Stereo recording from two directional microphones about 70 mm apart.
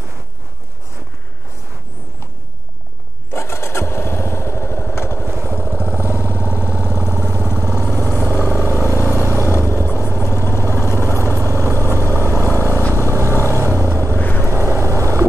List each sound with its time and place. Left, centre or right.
3.3 s motorcycle: left
5.3 s vehicle: right
6.2 s vehicle: left
6.6 s vehicle: right
7.7 s vehicle: left
8.6 s vehicle: right
9.5 s vehicle: left
11.2 s vehicle: right
12.4 s vehicle: left
13.0 s vehicle: right
14.1 s vehicle: left
14.4 s vehicle: right